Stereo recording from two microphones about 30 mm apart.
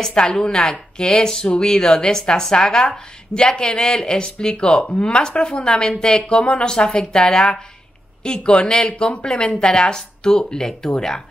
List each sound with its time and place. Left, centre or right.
0.1 s a woman's voice: left